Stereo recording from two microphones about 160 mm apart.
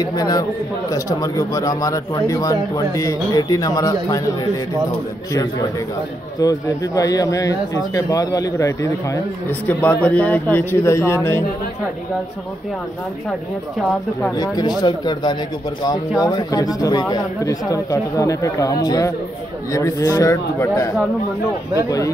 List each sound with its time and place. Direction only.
0.0 s a man's voice: 25° left (ahead or behind)
5.3 s a man's voice: 20° left (ahead or behind)
14.3 s a man's voice: 25° left (ahead or behind)